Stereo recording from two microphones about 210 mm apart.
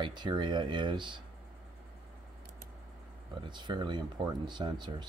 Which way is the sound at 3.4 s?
20° right (ahead or behind).